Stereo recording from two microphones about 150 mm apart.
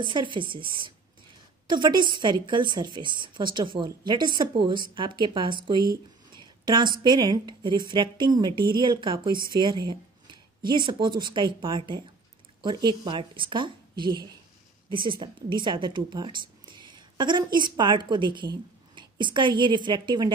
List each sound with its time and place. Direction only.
0.0 s a woman's voice: 35° right (ahead or behind)